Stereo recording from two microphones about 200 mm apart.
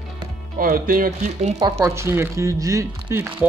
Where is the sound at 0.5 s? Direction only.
45° right (ahead or behind).